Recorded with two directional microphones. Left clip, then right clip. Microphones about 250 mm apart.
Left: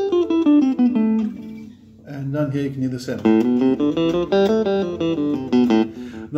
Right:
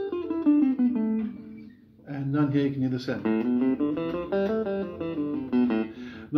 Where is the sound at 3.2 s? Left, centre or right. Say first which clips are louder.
Left 11 dB; left.